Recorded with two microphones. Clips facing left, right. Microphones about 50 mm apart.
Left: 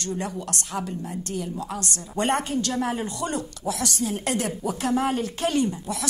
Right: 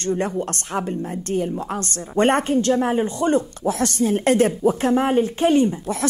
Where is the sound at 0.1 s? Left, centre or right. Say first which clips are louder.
Right 8 dB; right.